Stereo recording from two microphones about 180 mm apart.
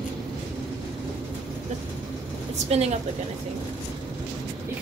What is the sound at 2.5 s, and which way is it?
Speech, 35° right (ahead or behind).